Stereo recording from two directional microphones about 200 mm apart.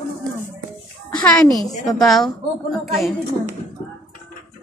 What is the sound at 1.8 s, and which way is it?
Speech, centre (ahead or behind).